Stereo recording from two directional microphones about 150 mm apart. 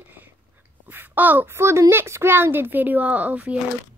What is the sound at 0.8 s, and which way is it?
A woman's voice, 15° right (ahead or behind).